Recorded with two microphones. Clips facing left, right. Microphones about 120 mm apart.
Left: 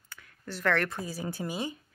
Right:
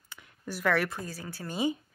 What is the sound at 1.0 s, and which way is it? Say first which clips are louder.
Speech: left 5 dB; 15° left (ahead or behind).